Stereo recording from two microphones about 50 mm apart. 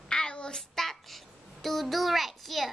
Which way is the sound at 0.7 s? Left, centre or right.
Centre.